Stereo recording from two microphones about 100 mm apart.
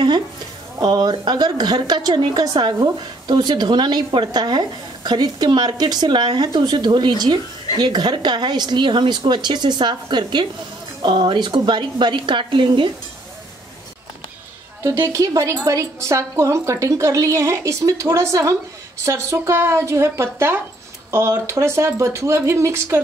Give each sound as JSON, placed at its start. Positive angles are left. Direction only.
{"t": 0.7, "sound": "a woman's voice", "side_deg": -45}
{"t": 15.0, "sound": "a woman's voice", "side_deg": -35}